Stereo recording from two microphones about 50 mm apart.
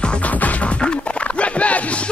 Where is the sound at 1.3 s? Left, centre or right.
Left.